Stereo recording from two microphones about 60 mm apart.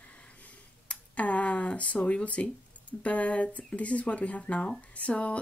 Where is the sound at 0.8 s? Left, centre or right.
Left.